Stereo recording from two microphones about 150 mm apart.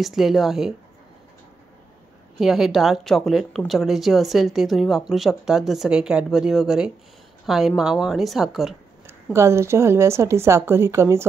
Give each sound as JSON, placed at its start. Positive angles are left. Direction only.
{"t": 0.0, "sound": "speech", "side_deg": 0}
{"t": 2.3, "sound": "speech", "side_deg": 0}
{"t": 9.0, "sound": "a woman's voice", "side_deg": -20}